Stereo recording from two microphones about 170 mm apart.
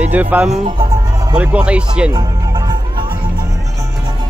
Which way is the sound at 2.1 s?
25° right (ahead or behind).